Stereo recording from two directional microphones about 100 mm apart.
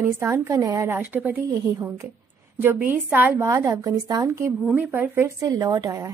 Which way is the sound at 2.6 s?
20° right (ahead or behind).